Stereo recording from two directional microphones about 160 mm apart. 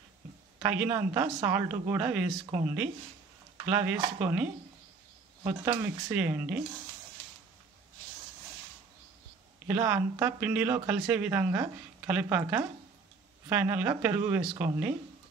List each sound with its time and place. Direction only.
0.6 s speech: 10° right (ahead or behind)
6.0 s speech: 10° right (ahead or behind)
9.7 s a woman's voice: 10° right (ahead or behind)
9.9 s speech: 20° right (ahead or behind)
10.4 s speech: 10° right (ahead or behind)